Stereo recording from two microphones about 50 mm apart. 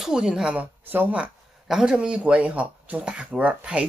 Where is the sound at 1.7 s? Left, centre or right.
Centre.